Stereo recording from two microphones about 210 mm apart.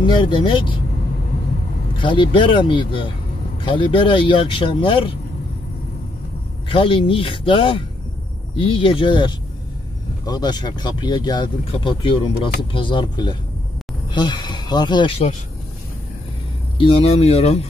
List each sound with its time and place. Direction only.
0.0 s speech: 20° left (ahead or behind)
2.0 s speech: 25° left (ahead or behind)
6.7 s speech: 25° left (ahead or behind)
16.7 s speech: 25° left (ahead or behind)